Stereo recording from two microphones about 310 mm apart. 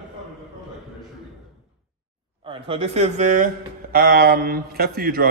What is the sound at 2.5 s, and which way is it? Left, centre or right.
A man's voice, centre.